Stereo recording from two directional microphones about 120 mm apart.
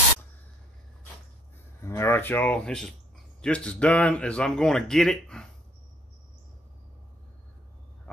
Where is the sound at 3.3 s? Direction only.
10° left (ahead or behind).